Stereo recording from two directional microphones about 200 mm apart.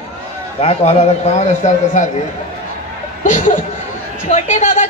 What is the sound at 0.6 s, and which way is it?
A woman's voice, 30° left (ahead or behind).